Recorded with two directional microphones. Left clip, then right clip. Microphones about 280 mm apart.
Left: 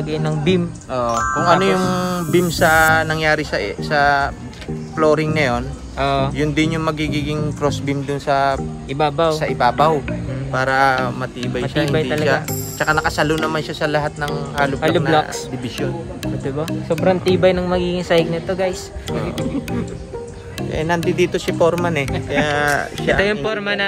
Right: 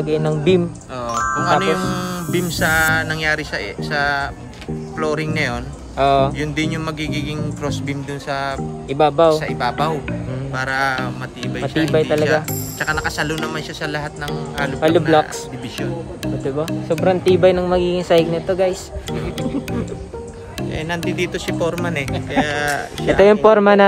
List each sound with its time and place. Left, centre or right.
0.0 s speech: centre
0.9 s speech: centre
5.9 s speech: centre
6.3 s speech: centre
8.9 s speech: centre
9.3 s speech: centre
14.8 s speech: centre
16.6 s speech: centre
20.7 s speech: centre
21.0 s speech: centre
23.0 s speech: right